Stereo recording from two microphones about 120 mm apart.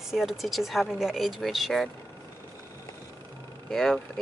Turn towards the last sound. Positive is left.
turn(degrees=5)  # may be behind; listen again after turning